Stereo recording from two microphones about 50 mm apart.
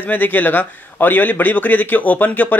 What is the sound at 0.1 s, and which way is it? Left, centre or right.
Speech, left.